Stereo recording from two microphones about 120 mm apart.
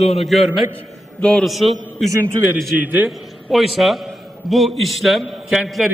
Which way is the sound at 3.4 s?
Centre (ahead or behind).